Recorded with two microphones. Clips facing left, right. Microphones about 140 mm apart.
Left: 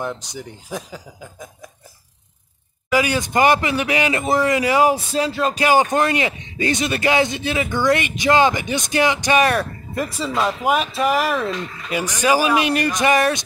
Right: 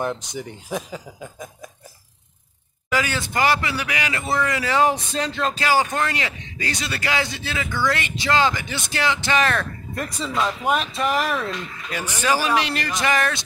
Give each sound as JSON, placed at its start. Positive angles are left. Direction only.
{"t": 0.0, "sound": "speech", "side_deg": 0}
{"t": 2.9, "sound": "speech", "side_deg": 15}
{"t": 5.6, "sound": "speech", "side_deg": 20}
{"t": 9.9, "sound": "speech", "side_deg": 5}
{"t": 11.9, "sound": "speech", "side_deg": 15}